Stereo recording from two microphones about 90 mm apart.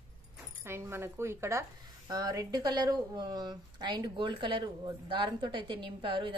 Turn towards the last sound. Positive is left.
turn(degrees=-65)  # may be behind; listen again after turning